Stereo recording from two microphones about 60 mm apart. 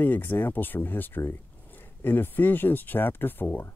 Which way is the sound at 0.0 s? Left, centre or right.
Left.